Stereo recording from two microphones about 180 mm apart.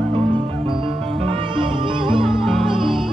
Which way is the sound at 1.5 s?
30° right (ahead or behind).